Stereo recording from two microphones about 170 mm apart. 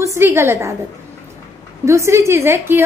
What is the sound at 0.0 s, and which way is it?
Speech, 15° right (ahead or behind).